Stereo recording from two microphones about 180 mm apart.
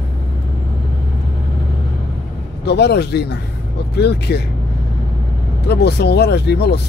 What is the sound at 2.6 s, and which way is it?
Speech, 65° left (ahead or behind).